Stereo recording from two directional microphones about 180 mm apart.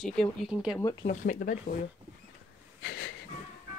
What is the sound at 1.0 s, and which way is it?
Speech, 45° left (ahead or behind).